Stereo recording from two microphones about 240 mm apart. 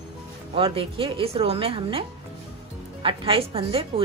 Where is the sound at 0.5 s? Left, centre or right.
Right.